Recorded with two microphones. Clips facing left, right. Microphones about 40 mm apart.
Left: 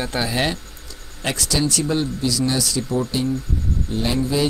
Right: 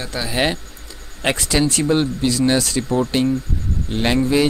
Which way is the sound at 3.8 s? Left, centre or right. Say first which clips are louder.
Right 5 dB; right.